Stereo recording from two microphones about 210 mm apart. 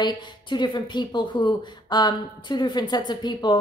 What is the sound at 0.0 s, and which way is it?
A woman's voice, 20° left (ahead or behind).